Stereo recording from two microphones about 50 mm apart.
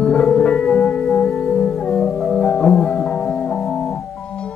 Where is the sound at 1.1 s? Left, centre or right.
Centre.